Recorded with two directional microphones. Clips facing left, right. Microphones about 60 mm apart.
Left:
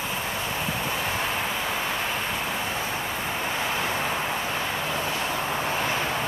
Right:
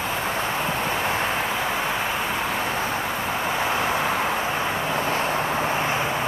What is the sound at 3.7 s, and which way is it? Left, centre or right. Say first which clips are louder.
Vehicle: right 4 dB; centre.